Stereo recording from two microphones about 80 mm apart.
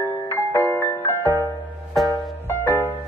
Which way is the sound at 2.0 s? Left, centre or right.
Centre.